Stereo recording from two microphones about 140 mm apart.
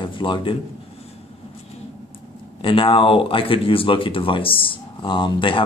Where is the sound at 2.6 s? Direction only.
40° left (ahead or behind).